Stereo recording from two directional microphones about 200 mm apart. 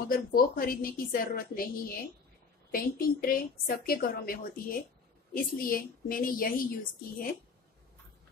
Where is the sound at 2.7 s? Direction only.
45° left (ahead or behind).